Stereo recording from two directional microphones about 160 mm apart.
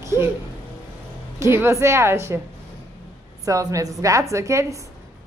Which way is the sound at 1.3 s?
15° right (ahead or behind).